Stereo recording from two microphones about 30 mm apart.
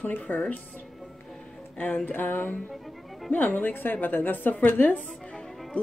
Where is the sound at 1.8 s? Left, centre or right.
Left.